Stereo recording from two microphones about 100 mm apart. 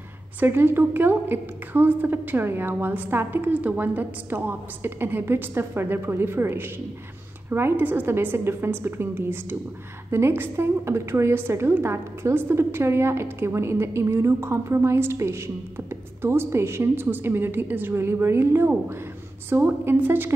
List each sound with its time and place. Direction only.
0.4 s a woman's voice: 20° right (ahead or behind)